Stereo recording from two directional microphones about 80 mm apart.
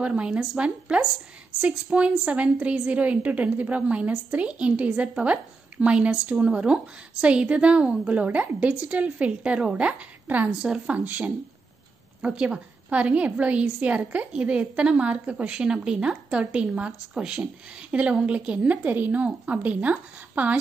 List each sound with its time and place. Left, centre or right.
0.0 s a woman's voice: centre
10.5 s a woman's voice: centre